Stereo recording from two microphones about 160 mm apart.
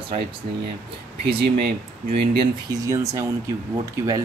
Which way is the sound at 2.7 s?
20° right (ahead or behind).